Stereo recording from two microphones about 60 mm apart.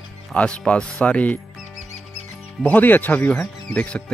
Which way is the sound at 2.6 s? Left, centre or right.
Left.